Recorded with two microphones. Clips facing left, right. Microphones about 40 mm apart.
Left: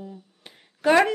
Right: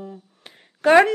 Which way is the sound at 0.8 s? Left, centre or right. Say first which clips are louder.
Right 4 dB; centre.